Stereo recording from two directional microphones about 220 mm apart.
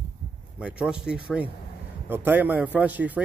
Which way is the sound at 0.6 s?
5° right (ahead or behind).